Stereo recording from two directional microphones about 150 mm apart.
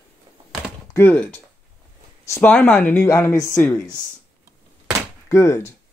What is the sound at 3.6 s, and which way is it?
Speech, 10° left (ahead or behind).